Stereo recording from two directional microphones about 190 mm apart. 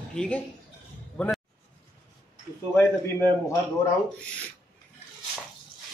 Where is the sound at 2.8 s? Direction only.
10° left (ahead or behind).